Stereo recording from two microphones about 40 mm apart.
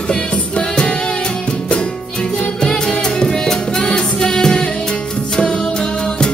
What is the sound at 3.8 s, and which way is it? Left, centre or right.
Music, centre.